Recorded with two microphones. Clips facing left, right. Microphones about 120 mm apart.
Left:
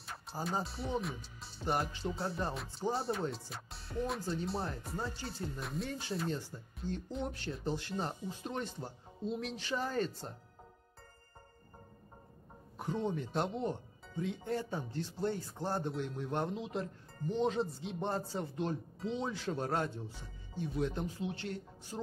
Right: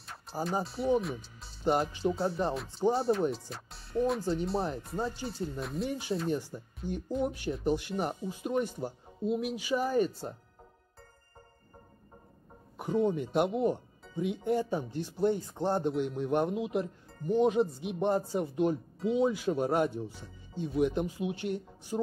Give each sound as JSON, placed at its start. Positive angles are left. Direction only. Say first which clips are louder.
{"t": 0.0, "sound": "music", "louder": "right 5 dB", "side_deg": 0}
{"t": 1.6, "sound": "speech", "louder": "right 7 dB", "side_deg": -20}
{"t": 2.9, "sound": "speech", "louder": "right 7 dB", "side_deg": 0}
{"t": 4.2, "sound": "speech", "louder": "right 6 dB", "side_deg": -20}
{"t": 5.6, "sound": "speech", "louder": "right 5 dB", "side_deg": 0}
{"t": 5.9, "sound": "speech", "louder": "right 7 dB", "side_deg": -15}
{"t": 7.1, "sound": "speech", "louder": "right 11 dB", "side_deg": 0}
{"t": 7.6, "sound": "speech", "louder": "right 6 dB", "side_deg": -15}
{"t": 12.7, "sound": "speech", "louder": "right 7 dB", "side_deg": -10}